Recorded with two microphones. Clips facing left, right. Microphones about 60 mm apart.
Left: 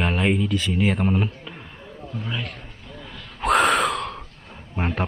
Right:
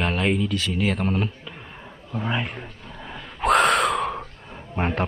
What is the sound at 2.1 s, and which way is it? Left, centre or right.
Speech, right.